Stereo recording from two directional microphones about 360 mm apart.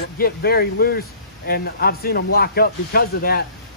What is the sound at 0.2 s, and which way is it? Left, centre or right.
Speech, left.